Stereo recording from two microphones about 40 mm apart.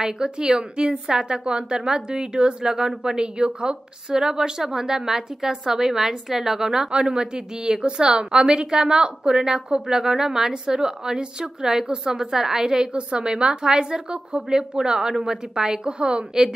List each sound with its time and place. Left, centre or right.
0.0 s a woman's voice: centre